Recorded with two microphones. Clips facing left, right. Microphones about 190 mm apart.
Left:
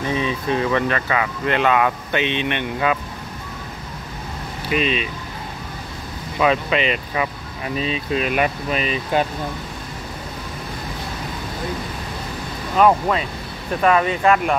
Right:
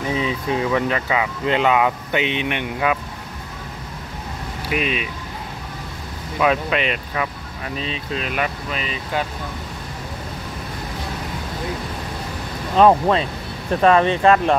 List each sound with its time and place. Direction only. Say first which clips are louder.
0.0 s speech: even; 10° right (ahead or behind)
4.6 s speech: left 2 dB; 10° right (ahead or behind)
6.4 s speech: left 1 dB; centre (ahead or behind); by 9.2 s 20° left (ahead or behind)
12.7 s speech: right 2 dB; 30° right (ahead or behind)